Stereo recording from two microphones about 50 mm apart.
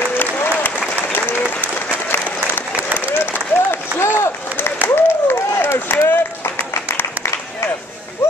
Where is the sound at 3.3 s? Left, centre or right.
Left.